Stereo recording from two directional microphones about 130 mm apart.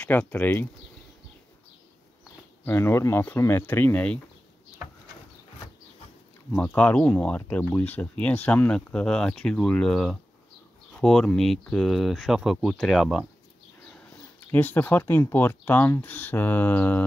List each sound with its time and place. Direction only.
0.0 s speech: 10° left (ahead or behind)
2.6 s speech: 20° left (ahead or behind)
6.5 s speech: 10° left (ahead or behind)
14.5 s speech: 15° left (ahead or behind)